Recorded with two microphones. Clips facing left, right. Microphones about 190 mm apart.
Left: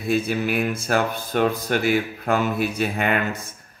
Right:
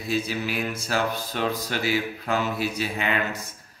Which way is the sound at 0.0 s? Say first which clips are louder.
Left 5 dB; 55° left (ahead or behind).